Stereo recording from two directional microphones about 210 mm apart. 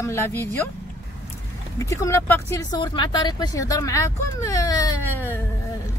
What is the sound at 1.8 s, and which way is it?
Speech, 15° left (ahead or behind).